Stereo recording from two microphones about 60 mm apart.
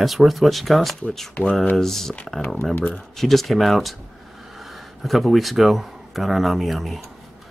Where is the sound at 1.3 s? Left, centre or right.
Centre.